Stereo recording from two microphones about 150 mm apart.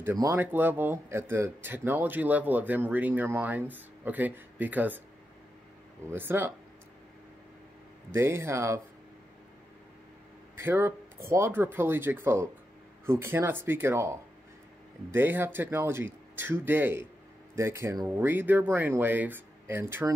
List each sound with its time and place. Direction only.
0.0 s speech: 15° right (ahead or behind)
6.0 s speech: 15° right (ahead or behind)
8.1 s speech: 15° right (ahead or behind)
10.6 s speech: 15° right (ahead or behind)